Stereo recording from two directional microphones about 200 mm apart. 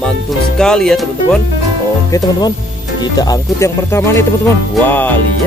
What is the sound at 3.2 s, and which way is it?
Speech, 15° left (ahead or behind).